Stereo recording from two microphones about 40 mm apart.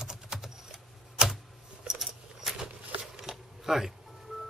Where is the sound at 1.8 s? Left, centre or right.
Centre.